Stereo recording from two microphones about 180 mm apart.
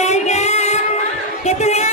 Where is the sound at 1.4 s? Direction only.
40° left (ahead or behind).